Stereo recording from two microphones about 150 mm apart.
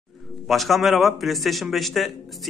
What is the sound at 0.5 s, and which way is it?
A man's voice, centre (ahead or behind).